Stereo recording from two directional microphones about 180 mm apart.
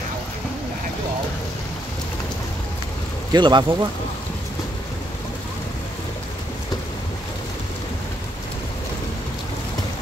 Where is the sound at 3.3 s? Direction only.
25° right (ahead or behind).